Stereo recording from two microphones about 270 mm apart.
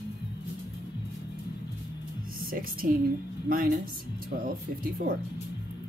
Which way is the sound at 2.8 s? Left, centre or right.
Right.